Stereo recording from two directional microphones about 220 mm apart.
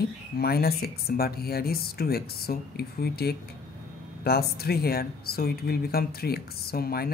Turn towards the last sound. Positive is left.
turn(degrees=45)  # may be behind; listen again after turning